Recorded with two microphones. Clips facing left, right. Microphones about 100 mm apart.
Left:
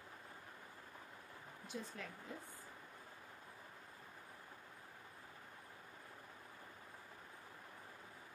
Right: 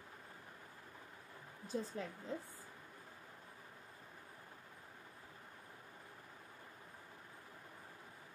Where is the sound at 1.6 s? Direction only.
35° right (ahead or behind).